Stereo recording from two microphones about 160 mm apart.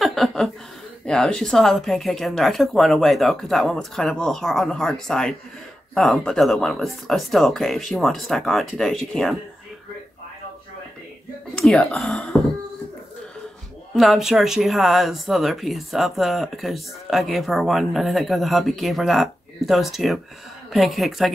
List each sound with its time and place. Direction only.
0.0 s a sound: centre (ahead or behind)
1.0 s speech: 5° left (ahead or behind)
11.5 s speech: 5° left (ahead or behind)
13.9 s speech: centre (ahead or behind)